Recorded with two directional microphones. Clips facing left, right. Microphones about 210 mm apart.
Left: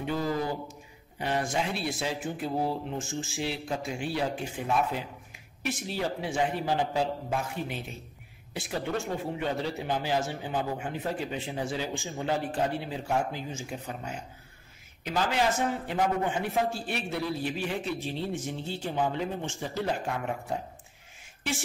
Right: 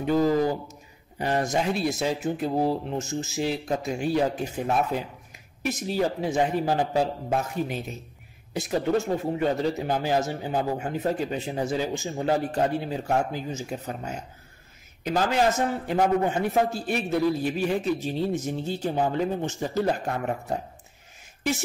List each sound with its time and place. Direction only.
0.0 s speech: 40° right (ahead or behind)